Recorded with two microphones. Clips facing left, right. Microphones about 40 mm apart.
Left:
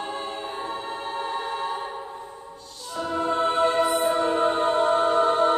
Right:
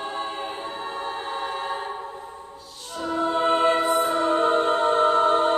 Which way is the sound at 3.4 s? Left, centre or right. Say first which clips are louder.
Right 2 dB; right.